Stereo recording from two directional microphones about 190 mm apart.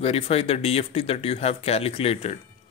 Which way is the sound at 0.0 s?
30° left (ahead or behind).